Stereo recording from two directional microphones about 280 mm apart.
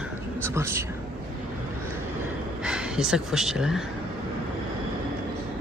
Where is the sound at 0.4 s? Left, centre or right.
Centre.